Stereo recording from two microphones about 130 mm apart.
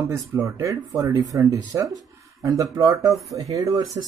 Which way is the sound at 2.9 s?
Centre (ahead or behind).